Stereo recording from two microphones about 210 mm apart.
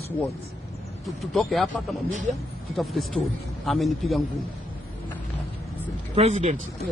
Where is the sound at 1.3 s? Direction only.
Centre (ahead or behind).